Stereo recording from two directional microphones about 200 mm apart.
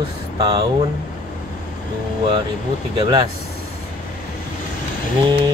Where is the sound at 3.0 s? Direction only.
25° right (ahead or behind).